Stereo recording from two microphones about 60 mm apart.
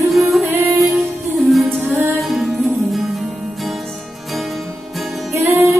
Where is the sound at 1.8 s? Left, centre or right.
Right.